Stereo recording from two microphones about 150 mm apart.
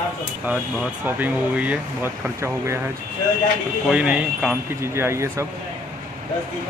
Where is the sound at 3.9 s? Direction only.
10° right (ahead or behind).